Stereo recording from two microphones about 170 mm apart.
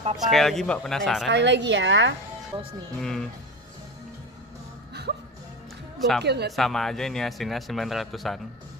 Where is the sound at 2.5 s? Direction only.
25° right (ahead or behind).